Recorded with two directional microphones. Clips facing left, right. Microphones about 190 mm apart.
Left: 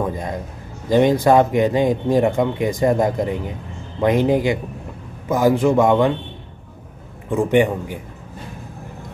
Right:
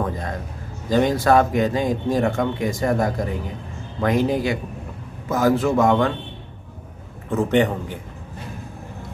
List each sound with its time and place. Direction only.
0.8 s speech: 15° left (ahead or behind)
7.2 s speech: 15° left (ahead or behind)